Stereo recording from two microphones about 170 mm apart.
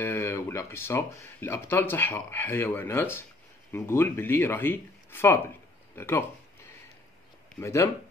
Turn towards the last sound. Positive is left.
turn(degrees=15)  # may be behind; listen again after turning